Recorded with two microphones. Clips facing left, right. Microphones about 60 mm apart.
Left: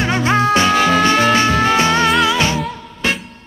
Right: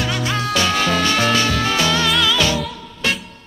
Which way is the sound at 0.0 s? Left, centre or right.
Left.